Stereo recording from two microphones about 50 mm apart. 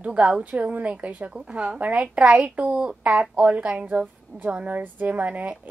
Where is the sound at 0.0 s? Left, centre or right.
Right.